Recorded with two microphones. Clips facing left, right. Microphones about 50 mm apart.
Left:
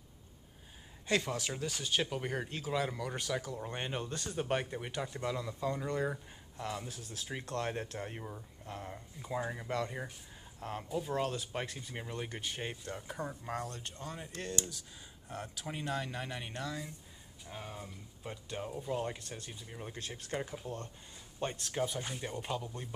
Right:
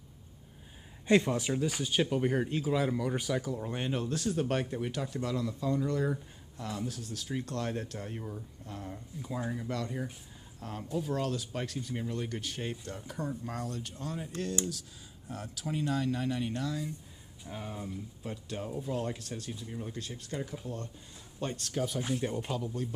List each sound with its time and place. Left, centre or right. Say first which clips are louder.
1.0 s speech: right 7 dB; centre
1.5 s speech: right 5 dB; centre; by 8.2 s left
8.8 s speech: right 3 dB; centre
10.8 s speech: right 4 dB; centre
11.1 s speech: right 1 dB; left
13.9 s speech: right 5 dB; centre
17.5 s speech: right 5 dB; centre
19.9 s speech: right 1 dB; left
21.4 s speech: right 2 dB; centre
21.8 s speech: right 8 dB; centre